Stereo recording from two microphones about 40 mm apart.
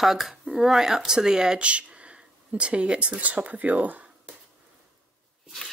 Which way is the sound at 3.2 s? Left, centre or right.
Right.